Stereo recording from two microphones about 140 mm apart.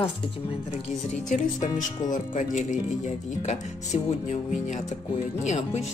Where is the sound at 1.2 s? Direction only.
70° left (ahead or behind).